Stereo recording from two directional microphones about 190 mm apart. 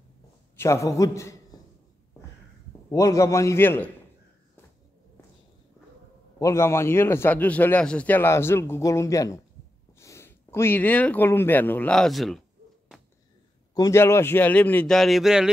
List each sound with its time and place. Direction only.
0.6 s a man's voice: 15° left (ahead or behind)
2.9 s a man's voice: 15° left (ahead or behind)
6.4 s a man's voice: 15° left (ahead or behind)
13.7 s a man's voice: 15° left (ahead or behind); by 15.5 s 5° right (ahead or behind)